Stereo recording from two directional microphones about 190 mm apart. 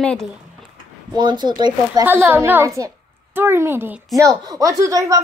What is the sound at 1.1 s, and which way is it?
Speech, 25° right (ahead or behind).